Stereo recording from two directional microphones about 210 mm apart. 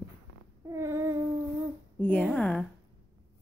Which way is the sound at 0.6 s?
15° right (ahead or behind).